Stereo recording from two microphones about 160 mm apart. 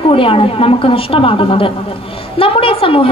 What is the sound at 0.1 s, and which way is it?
A woman's voice, 35° left (ahead or behind).